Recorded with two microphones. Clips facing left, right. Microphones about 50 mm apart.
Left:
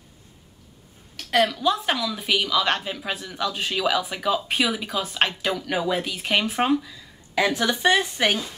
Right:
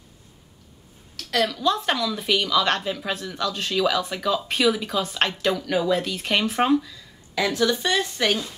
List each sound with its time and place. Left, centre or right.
1.1 s a sound: left
1.5 s a woman's voice: centre
7.3 s speech: left